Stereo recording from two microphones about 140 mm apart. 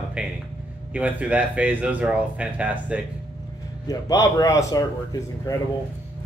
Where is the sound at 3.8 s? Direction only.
25° left (ahead or behind).